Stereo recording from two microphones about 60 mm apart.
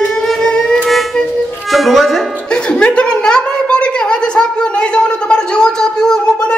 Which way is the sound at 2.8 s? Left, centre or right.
Centre.